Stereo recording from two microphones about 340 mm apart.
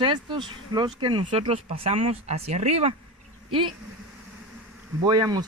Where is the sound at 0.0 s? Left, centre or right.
Centre.